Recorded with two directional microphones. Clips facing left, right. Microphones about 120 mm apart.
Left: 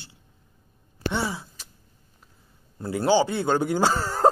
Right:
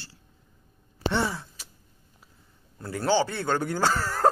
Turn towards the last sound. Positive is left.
turn(degrees=20)  # may be behind; listen again after turning